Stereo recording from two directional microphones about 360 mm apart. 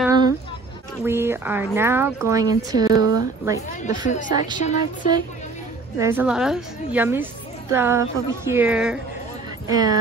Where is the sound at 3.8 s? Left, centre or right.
Left.